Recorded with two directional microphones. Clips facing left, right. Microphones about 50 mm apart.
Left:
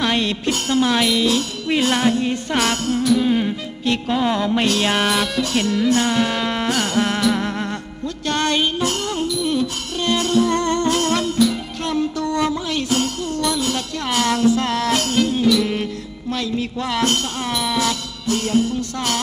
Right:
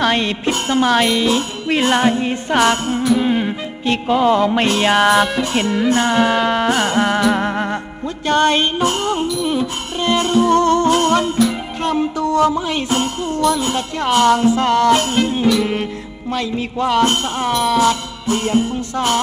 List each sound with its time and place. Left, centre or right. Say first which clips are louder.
0.0 s music: right 3 dB; centre